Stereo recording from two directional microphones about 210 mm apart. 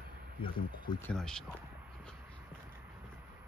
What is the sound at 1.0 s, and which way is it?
Speech, 5° left (ahead or behind).